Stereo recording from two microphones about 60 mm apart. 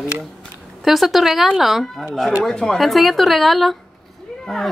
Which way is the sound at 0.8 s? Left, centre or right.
Centre.